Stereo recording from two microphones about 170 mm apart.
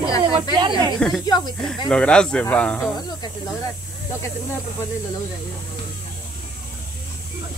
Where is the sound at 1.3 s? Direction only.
25° left (ahead or behind).